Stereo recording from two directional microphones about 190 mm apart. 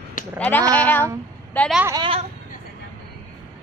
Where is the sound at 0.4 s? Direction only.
10° left (ahead or behind).